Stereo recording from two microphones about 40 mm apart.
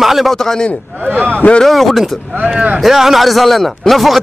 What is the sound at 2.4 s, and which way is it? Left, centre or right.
Speech, right.